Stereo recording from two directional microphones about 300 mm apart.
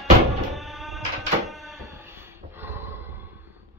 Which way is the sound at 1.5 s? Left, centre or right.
Centre.